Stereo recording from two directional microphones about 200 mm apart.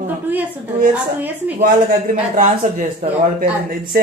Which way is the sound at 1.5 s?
45° right (ahead or behind).